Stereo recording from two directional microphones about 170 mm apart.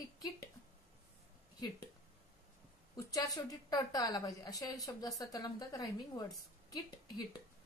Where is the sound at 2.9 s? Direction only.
20° left (ahead or behind).